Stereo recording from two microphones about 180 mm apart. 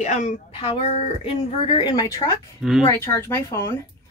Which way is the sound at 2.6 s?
Centre (ahead or behind).